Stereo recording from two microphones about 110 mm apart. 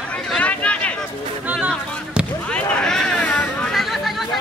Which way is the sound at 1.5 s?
15° right (ahead or behind).